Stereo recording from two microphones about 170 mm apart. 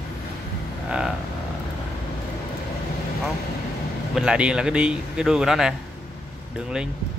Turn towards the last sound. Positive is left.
turn(degrees=-5)  # may be behind; listen again after turning